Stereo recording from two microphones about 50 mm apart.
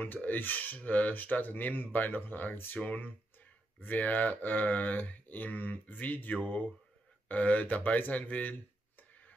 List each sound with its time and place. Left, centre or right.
0.0 s speech: left
2.8 s speech: left